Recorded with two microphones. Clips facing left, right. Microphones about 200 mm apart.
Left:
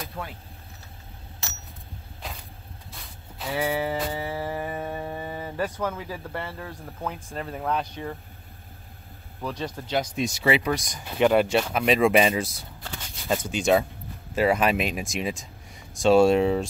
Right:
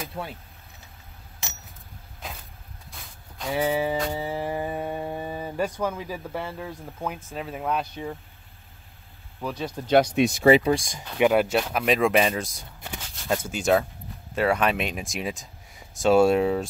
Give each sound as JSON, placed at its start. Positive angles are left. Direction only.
{"t": 0.2, "sound": "speech", "side_deg": -30}
{"t": 2.2, "sound": "vehicle", "side_deg": 0}
{"t": 2.9, "sound": "a sound", "side_deg": 0}
{"t": 3.7, "sound": "music", "side_deg": -15}
{"t": 4.3, "sound": "speech", "side_deg": -15}
{"t": 9.4, "sound": "speech", "side_deg": -5}
{"t": 9.8, "sound": "speech", "side_deg": -65}
{"t": 10.4, "sound": "speech", "side_deg": -40}
{"t": 11.1, "sound": "speech", "side_deg": -5}